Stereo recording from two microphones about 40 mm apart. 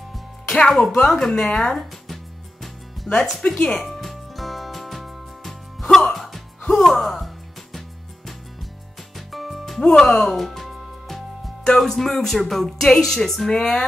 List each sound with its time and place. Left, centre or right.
0.5 s speech: centre
1.0 s speech: centre
3.1 s speech: centre
3.8 s music: centre
6.8 s speech: centre
9.1 s music: centre
9.8 s music: centre
11.7 s speech: centre